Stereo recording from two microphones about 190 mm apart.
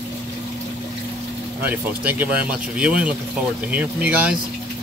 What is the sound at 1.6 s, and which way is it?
Speech, 10° right (ahead or behind).